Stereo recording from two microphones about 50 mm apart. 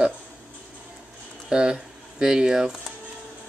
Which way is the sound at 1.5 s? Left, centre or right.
Centre.